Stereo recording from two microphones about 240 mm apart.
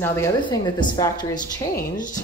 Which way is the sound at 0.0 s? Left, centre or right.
Centre.